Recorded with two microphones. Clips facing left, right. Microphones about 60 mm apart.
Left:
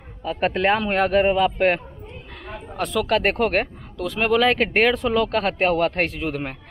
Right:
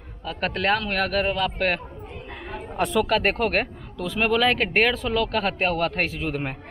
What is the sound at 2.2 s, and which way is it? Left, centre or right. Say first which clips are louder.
Chatter: right 1 dB; centre.